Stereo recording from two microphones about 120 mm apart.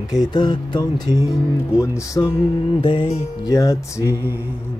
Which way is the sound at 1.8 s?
25° left (ahead or behind).